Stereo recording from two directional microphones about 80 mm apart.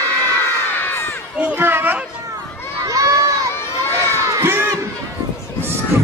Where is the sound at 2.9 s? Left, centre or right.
Right.